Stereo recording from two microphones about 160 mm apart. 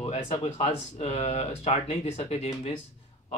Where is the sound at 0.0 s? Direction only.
40° left (ahead or behind).